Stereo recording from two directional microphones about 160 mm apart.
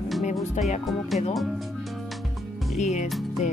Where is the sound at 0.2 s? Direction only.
45° left (ahead or behind).